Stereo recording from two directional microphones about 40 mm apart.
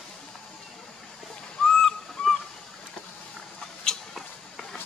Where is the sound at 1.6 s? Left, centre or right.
Centre.